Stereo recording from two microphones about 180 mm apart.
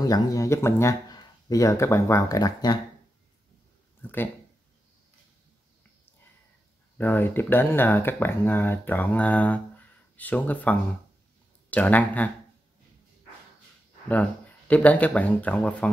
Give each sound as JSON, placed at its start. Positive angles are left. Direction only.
{"t": 0.0, "sound": "speech", "side_deg": 20}
{"t": 4.0, "sound": "speech", "side_deg": 10}
{"t": 7.0, "sound": "speech", "side_deg": 10}
{"t": 14.0, "sound": "speech", "side_deg": 10}